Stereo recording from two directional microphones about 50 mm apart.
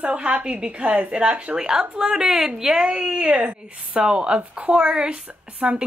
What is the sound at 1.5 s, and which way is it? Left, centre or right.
Speech, centre.